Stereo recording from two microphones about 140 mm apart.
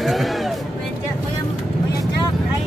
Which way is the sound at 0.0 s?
Centre (ahead or behind).